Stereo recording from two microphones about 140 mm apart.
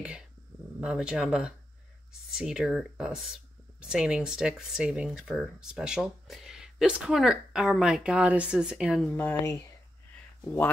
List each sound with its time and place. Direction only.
0.7 s speech: 5° right (ahead or behind)
9.1 s speech: 15° left (ahead or behind)